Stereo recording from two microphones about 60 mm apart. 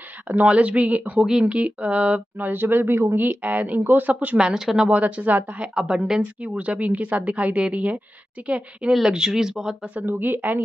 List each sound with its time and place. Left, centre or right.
0.5 s speech: right
4.4 s speech: centre
4.8 s speech: right
5.8 s speech: centre
6.4 s speech: right
8.9 s speech: centre
9.9 s speech: right